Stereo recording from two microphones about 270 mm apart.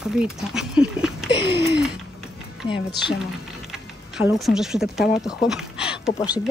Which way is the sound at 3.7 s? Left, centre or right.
Centre.